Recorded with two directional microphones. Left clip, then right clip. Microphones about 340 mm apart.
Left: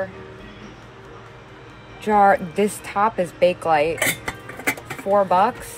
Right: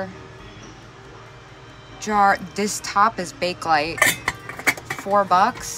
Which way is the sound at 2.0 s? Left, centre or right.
Centre.